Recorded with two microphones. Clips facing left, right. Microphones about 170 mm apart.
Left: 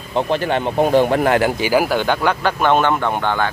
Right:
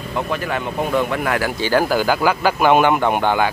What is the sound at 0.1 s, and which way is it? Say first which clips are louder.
Speech: left 5 dB; 30° left (ahead or behind).